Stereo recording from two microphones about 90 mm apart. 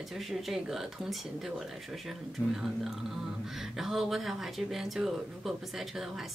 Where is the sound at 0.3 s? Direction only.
5° right (ahead or behind).